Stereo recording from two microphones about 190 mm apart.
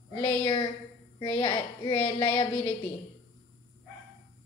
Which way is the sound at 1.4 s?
25° left (ahead or behind).